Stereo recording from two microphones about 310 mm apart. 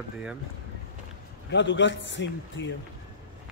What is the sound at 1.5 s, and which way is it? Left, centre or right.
A man's voice, left.